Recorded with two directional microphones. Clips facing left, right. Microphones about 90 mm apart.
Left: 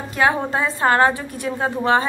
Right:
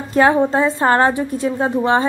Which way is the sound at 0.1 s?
30° right (ahead or behind).